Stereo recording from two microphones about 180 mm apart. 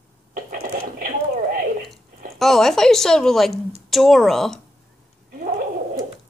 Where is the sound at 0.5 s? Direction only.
50° right (ahead or behind).